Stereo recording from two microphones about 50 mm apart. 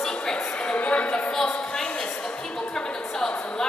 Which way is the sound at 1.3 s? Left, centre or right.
Centre.